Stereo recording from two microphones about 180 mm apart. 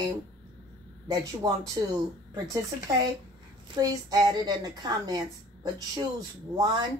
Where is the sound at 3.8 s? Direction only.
20° right (ahead or behind).